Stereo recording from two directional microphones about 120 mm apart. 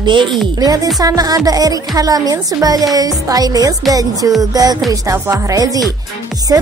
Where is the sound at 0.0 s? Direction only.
40° right (ahead or behind).